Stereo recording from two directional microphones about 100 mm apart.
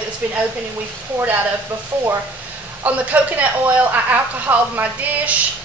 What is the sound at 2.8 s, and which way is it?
A woman's voice, 15° right (ahead or behind).